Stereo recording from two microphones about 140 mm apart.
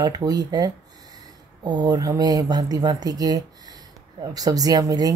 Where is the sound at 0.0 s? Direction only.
25° right (ahead or behind).